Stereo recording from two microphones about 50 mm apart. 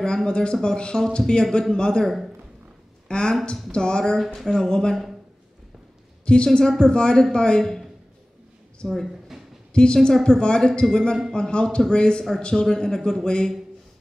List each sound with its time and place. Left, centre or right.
0.0 s a man's voice: centre
2.0 s speech: centre
3.1 s a man's voice: centre
6.2 s a man's voice: centre
8.8 s speech: centre
9.9 s a man's voice: centre